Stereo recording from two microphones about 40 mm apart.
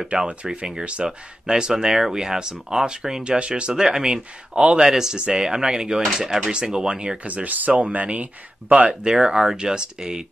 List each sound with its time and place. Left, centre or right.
0.6 s speech: right
3.3 s speech: right
7.2 s speech: right